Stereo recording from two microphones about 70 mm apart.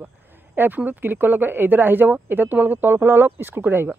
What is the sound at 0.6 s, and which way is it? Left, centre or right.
Speech, right.